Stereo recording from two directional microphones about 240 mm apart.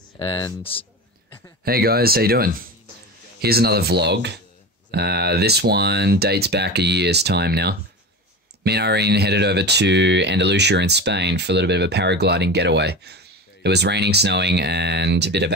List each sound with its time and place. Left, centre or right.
0.2 s speech: left
1.6 s speech: right